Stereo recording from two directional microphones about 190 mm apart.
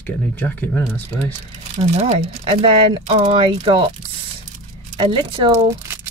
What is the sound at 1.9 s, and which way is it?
Speech, 35° right (ahead or behind).